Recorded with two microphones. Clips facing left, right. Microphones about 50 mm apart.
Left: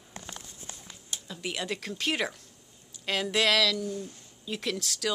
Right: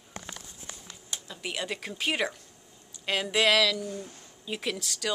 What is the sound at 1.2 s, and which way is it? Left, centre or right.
Speech, centre.